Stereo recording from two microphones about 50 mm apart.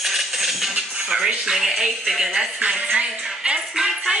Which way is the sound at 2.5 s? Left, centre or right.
Right.